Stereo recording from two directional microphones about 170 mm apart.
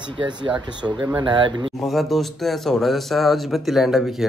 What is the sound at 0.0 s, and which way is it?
Speech, 30° right (ahead or behind).